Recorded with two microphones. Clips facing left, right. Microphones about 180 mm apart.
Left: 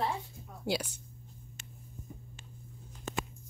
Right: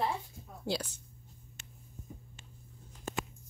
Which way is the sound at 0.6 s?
10° left (ahead or behind).